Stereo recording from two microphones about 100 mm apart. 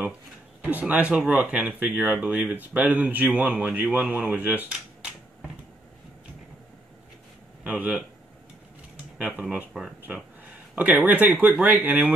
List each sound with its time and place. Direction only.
0.6 s speech: 15° right (ahead or behind)
7.6 s speech: 15° right (ahead or behind)
9.2 s speech: 15° right (ahead or behind)